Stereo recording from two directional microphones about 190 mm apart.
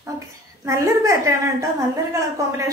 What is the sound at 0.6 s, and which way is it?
A woman's voice, 15° right (ahead or behind).